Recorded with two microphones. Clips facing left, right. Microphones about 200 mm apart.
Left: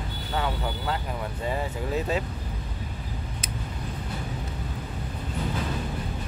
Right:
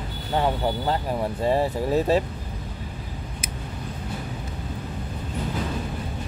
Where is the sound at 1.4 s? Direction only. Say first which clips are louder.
Right 8 dB; 35° right (ahead or behind).